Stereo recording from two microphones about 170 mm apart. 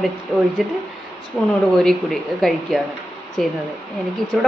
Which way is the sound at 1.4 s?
5° left (ahead or behind).